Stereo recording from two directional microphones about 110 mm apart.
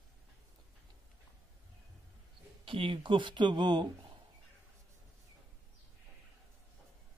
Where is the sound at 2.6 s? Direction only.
50° right (ahead or behind).